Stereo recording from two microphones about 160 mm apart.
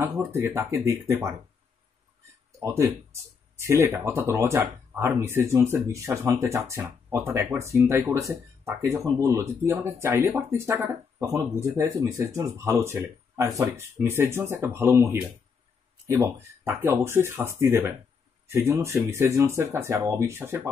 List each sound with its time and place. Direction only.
0.0 s speech: 15° right (ahead or behind)
2.6 s speech: 15° right (ahead or behind)